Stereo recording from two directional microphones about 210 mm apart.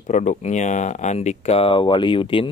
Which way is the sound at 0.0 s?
35° left (ahead or behind).